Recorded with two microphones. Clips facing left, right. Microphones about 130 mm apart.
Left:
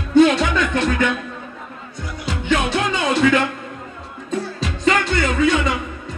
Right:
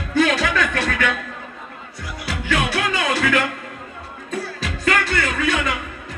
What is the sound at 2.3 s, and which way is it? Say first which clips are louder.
Music: left 3 dB; 25° left (ahead or behind).